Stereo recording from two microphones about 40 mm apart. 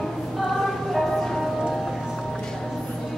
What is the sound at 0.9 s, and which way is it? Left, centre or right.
Ice cream truck, centre.